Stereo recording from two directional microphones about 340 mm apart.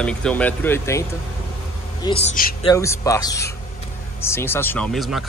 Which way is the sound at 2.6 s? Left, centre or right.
Centre.